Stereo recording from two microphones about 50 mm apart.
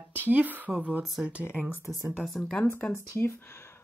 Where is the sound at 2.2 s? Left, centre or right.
Centre.